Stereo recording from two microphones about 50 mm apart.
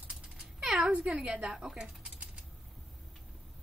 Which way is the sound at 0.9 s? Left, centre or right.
Right.